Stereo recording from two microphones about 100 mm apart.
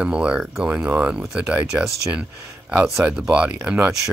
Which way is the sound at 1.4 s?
25° right (ahead or behind).